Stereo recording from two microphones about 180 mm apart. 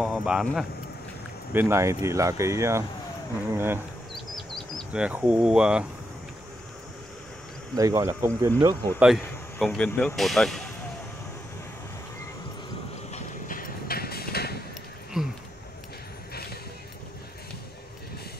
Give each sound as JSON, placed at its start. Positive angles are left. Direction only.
{"t": 0.0, "sound": "speech", "side_deg": -5}
{"t": 1.5, "sound": "speech", "side_deg": -15}
{"t": 4.1, "sound": "a sound", "side_deg": 0}
{"t": 7.7, "sound": "speech", "side_deg": -20}
{"t": 9.0, "sound": "speech", "side_deg": 0}
{"t": 13.1, "sound": "clip-clop", "side_deg": 50}
{"t": 15.2, "sound": "a sound", "side_deg": 0}